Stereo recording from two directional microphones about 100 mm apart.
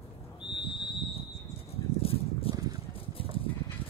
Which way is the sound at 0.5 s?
50° left (ahead or behind).